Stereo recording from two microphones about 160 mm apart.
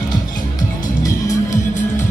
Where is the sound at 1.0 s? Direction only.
20° left (ahead or behind).